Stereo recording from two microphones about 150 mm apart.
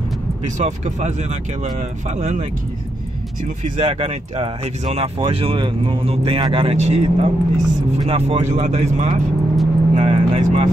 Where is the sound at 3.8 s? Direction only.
35° right (ahead or behind).